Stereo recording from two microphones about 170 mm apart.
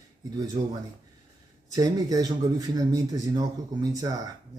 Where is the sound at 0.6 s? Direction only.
40° right (ahead or behind).